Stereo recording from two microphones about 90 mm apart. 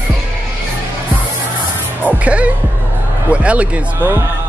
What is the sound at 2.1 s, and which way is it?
Music, 15° right (ahead or behind).